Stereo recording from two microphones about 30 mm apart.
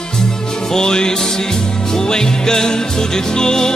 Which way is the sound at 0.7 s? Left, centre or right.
Left.